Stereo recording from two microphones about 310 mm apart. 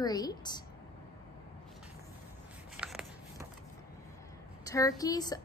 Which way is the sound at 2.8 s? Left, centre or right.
Centre.